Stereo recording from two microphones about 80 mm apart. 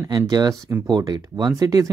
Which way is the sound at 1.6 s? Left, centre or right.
Right.